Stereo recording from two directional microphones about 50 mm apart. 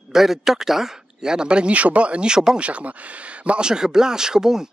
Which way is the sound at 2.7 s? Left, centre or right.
Right.